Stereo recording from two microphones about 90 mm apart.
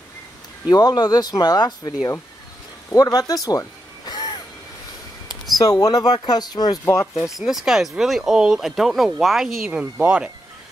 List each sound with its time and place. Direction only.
0.7 s speech: 45° left (ahead or behind)
2.9 s a sound: 45° left (ahead or behind)
5.6 s speech: 45° left (ahead or behind)
6.8 s speech: 30° left (ahead or behind)
7.3 s speech: 5° right (ahead or behind)
9.7 s speech: 15° right (ahead or behind)